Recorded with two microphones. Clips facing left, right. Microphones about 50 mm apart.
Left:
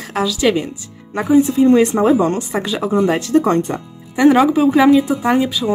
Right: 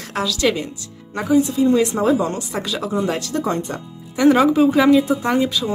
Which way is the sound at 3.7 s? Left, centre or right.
Centre.